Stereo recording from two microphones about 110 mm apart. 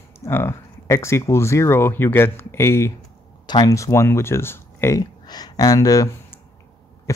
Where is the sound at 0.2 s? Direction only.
25° left (ahead or behind).